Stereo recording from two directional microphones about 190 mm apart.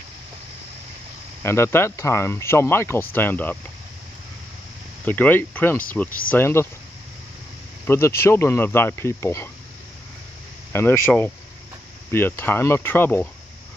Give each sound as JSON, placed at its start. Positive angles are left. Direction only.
{"t": 1.4, "sound": "speech", "side_deg": 15}
{"t": 5.0, "sound": "speech", "side_deg": 10}
{"t": 6.0, "sound": "speech", "side_deg": 50}
{"t": 6.3, "sound": "speech", "side_deg": 15}
{"t": 7.8, "sound": "speech", "side_deg": 15}
{"t": 10.7, "sound": "speech", "side_deg": 10}